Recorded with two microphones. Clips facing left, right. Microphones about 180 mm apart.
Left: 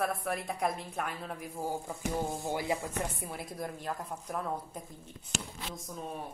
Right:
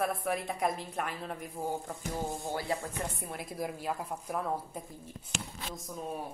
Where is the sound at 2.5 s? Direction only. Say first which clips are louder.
Left 1 dB; 15° left (ahead or behind).